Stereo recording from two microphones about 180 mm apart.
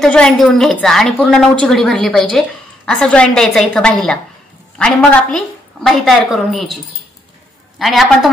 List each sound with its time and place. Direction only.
0.0 s a woman's voice: 5° left (ahead or behind)
7.8 s a woman's voice: centre (ahead or behind)